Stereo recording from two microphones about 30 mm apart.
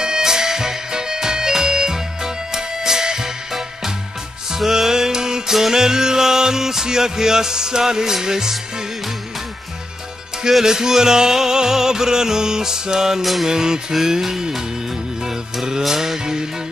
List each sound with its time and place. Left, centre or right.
0.0 s music: centre
4.6 s music: centre
10.6 s music: centre
13.2 s music: centre
13.5 s music: right